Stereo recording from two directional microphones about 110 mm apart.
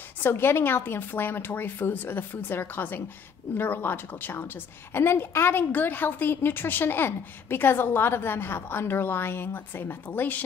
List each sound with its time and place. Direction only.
0.2 s a woman's voice: 20° left (ahead or behind)